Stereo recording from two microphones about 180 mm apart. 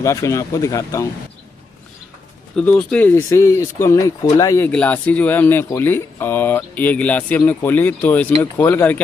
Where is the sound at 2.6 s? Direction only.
10° left (ahead or behind).